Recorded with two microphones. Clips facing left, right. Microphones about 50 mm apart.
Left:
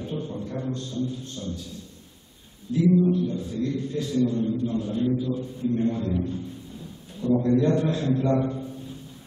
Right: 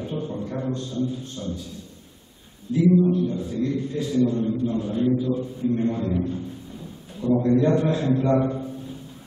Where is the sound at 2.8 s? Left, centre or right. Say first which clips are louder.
Right 2 dB; centre.